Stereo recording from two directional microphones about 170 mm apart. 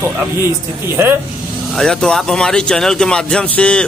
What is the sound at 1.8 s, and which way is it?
A man's voice, 5° left (ahead or behind).